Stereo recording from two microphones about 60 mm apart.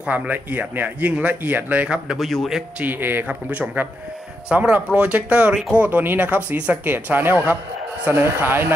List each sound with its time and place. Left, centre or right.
0.1 s speech: right
2.1 s a man's voice: centre
2.8 s speech: right
5.5 s speech: centre
5.8 s speech: right